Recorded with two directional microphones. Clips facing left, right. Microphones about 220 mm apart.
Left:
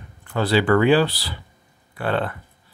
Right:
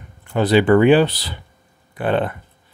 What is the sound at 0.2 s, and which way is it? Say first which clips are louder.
Speech: right 5 dB; 20° right (ahead or behind).